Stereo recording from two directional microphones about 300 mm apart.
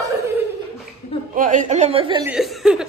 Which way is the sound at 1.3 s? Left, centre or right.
Right.